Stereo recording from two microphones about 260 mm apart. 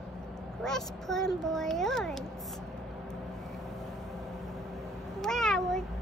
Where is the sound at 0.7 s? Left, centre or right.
Centre.